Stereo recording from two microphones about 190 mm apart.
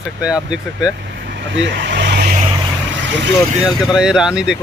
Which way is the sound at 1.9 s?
60° right (ahead or behind).